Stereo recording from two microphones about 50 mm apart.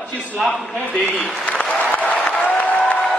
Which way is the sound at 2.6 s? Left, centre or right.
Left.